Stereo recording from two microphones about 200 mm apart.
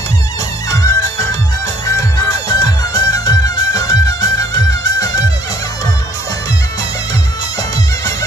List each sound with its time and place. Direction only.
0.7 s music: 15° left (ahead or behind)